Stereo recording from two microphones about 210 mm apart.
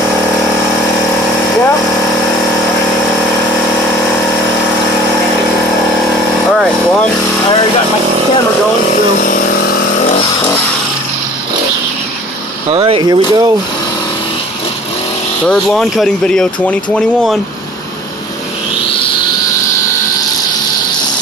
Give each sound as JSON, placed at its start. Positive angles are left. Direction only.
{"t": 9.2, "sound": "vehicle", "side_deg": 45}
{"t": 12.6, "sound": "speech", "side_deg": -25}
{"t": 15.4, "sound": "speech", "side_deg": 0}